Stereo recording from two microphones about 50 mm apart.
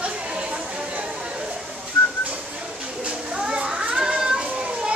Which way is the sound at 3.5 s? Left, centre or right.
Centre.